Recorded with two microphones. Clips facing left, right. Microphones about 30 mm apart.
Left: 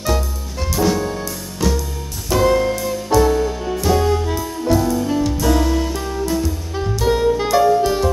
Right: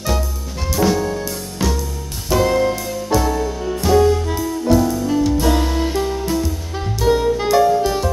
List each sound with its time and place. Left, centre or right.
0.0 s music: centre
5.4 s music: centre
6.3 s music: centre